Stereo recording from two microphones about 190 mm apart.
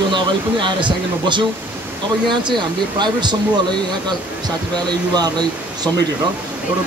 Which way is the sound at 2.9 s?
25° right (ahead or behind).